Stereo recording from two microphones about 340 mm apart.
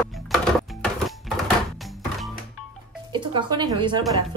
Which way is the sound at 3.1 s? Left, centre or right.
Centre.